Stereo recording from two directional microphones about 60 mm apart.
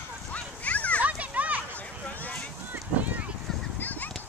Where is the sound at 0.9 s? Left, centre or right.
Right.